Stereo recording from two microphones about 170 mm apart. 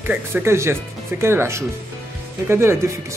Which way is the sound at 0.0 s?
15° right (ahead or behind).